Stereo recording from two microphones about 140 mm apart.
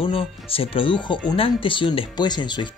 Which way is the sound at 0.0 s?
40° left (ahead or behind).